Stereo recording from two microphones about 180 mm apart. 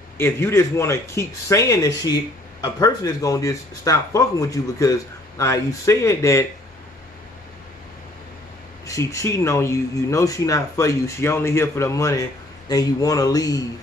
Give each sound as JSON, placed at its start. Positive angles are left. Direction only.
{"t": 0.2, "sound": "speech", "side_deg": 15}
{"t": 8.8, "sound": "speech", "side_deg": 15}